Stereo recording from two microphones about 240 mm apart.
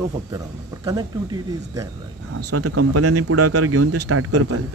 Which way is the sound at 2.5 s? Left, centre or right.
Right.